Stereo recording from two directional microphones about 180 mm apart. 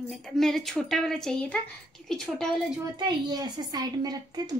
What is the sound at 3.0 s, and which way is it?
A child's voice, 25° right (ahead or behind).